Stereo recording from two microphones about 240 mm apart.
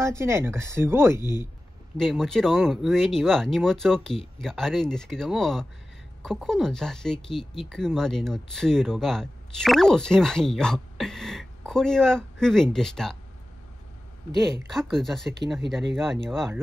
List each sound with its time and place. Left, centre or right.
0.0 s speech: centre
1.2 s speech: centre
2.0 s speech: centre
14.7 s speech: centre